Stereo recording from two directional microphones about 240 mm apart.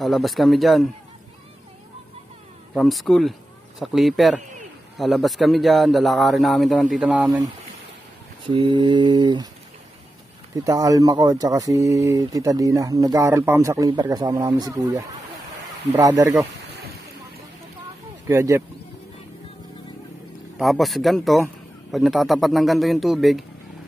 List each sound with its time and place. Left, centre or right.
0.0 s speech: centre
2.7 s speech: centre
8.5 s mantra: centre
10.5 s speech: centre
18.3 s speech: centre
20.5 s speech: centre